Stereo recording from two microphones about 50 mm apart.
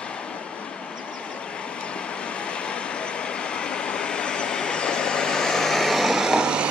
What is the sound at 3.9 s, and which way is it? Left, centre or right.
Vehicle, centre.